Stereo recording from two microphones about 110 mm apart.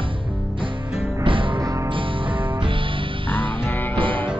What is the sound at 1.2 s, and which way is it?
Music, 50° right (ahead or behind).